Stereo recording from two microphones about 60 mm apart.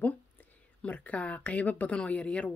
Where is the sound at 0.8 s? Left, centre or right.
Left.